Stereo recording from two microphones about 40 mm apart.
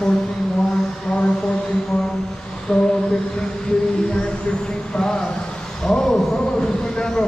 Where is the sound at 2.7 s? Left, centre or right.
Centre.